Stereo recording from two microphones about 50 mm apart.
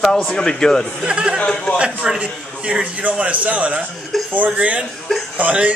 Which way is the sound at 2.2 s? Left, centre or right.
Right.